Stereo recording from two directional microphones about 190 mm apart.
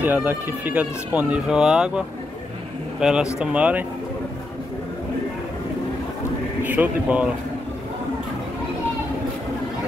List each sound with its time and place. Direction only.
0.0 s speech: 10° right (ahead or behind)
6.6 s speech: 10° right (ahead or behind)